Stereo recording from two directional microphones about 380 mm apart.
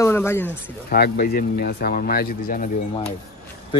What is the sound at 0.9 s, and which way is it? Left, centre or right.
Speech, left.